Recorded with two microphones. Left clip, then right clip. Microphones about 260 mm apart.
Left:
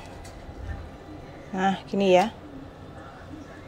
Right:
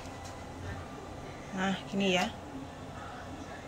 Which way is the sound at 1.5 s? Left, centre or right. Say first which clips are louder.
Left 9 dB; centre.